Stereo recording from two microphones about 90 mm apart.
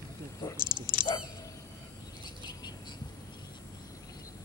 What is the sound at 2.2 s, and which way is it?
Cricket, 50° left (ahead or behind).